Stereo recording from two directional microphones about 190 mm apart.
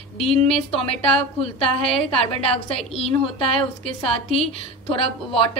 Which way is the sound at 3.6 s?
30° left (ahead or behind).